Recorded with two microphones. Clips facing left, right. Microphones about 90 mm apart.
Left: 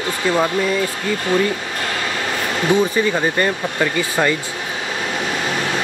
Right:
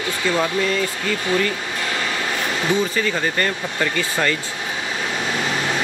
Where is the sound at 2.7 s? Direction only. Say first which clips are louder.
Left 5 dB; 15° left (ahead or behind).